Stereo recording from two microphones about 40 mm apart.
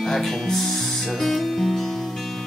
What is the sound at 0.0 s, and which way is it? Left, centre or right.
Speech, centre.